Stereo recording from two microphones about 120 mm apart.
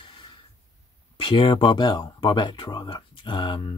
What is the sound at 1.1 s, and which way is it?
Speech, 45° left (ahead or behind).